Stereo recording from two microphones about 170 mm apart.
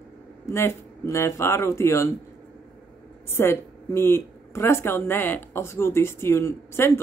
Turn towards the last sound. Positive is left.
turn(degrees=15)  # may be behind; listen again after turning